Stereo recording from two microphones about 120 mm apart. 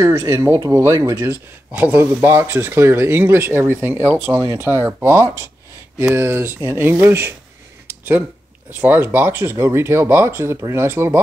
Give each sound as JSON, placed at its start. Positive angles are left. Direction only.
{"t": 0.0, "sound": "speech", "side_deg": -25}
{"t": 1.7, "sound": "speech", "side_deg": -15}
{"t": 8.7, "sound": "speech", "side_deg": -15}